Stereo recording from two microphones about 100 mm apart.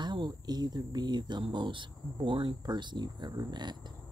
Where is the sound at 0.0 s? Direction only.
45° right (ahead or behind).